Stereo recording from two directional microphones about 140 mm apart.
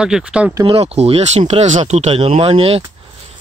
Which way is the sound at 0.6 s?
45° right (ahead or behind).